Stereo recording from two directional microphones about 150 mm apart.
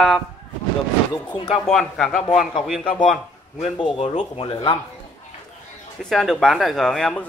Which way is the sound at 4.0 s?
40° left (ahead or behind).